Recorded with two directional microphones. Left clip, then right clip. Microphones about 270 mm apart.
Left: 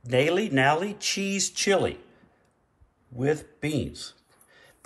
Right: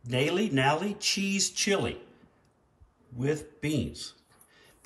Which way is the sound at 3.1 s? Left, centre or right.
Centre.